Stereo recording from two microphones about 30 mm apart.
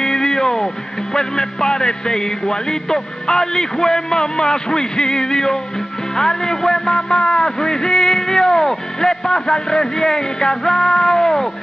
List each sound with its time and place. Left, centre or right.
0.0 s music: centre
1.1 s a man's voice: centre